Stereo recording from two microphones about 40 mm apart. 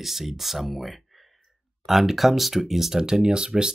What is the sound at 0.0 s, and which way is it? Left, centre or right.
Speech, centre.